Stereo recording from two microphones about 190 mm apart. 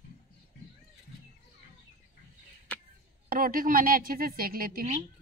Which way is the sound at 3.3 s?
50° right (ahead or behind).